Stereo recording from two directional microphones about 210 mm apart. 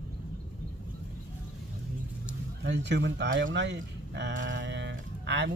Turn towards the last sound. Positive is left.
turn(degrees=-55)  # may be behind; listen again after turning